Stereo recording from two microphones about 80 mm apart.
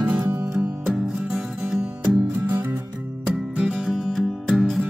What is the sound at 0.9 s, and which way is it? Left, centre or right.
Music, centre.